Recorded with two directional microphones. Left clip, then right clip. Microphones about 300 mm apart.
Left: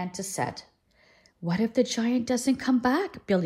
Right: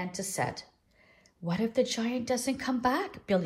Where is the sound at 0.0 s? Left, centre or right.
Centre.